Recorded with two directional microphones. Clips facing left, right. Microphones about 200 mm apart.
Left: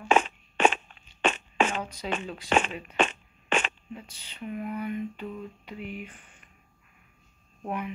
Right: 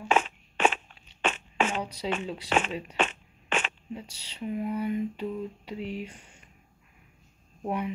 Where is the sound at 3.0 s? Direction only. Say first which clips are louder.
Left 4 dB; 5° right (ahead or behind).